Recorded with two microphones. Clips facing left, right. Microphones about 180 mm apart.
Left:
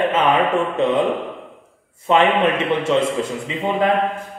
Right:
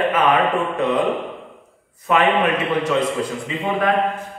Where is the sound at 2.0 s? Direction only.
25° left (ahead or behind).